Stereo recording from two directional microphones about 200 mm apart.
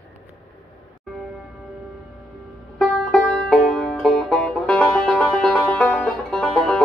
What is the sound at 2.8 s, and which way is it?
Music, centre (ahead or behind).